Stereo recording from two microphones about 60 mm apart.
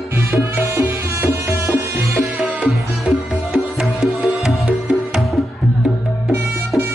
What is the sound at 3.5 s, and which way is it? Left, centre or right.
Music, centre.